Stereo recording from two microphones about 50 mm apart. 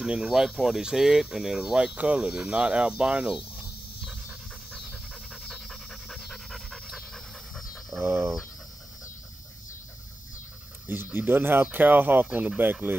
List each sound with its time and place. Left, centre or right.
0.0 s speech: centre
4.6 s pant: centre
7.7 s pant: centre
11.1 s speech: right